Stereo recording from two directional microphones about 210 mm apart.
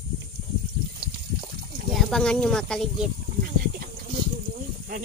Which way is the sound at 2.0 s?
Centre (ahead or behind).